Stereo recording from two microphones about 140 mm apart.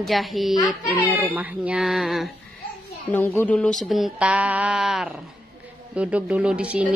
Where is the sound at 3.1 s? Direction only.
15° left (ahead or behind).